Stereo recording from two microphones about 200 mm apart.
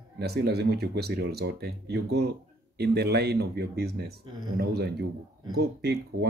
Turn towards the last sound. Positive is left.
turn(degrees=-50)  # may be behind; listen again after turning